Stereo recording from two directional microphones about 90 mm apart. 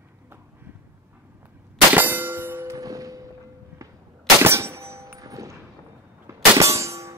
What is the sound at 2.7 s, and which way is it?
Music, 40° right (ahead or behind).